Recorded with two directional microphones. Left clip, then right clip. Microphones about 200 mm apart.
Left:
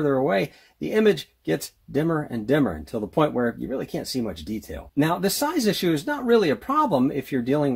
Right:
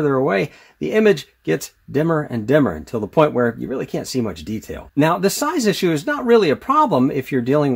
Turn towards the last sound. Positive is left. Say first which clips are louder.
# right 6 dB
turn(degrees=-25)  # may be behind; listen again after turning